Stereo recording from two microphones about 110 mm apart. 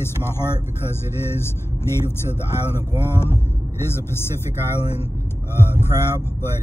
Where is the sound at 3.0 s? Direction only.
20° left (ahead or behind).